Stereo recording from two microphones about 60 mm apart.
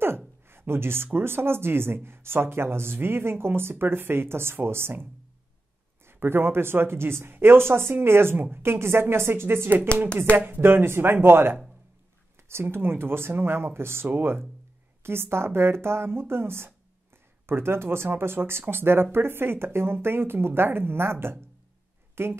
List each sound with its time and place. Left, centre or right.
0.5 s speech: right
6.0 s speech: right